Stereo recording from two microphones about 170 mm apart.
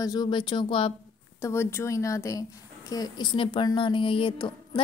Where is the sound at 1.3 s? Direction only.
15° left (ahead or behind).